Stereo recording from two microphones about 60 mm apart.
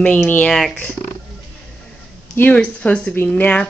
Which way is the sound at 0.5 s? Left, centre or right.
Centre.